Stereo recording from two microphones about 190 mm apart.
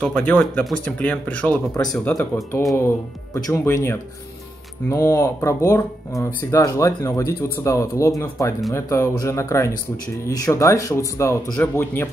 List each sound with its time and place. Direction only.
0.0 s speech: 5° left (ahead or behind)